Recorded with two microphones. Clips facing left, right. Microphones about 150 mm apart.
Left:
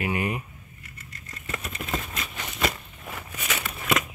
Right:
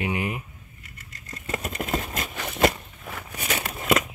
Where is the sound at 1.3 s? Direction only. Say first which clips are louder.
Right 5 dB; 40° right (ahead or behind).